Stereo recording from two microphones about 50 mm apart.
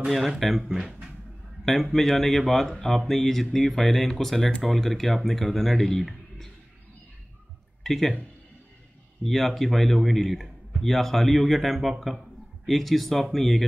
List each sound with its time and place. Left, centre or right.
0.1 s a man's voice: centre
0.7 s speech: centre
1.7 s a man's voice: centre
7.8 s speech: centre
9.2 s a man's voice: centre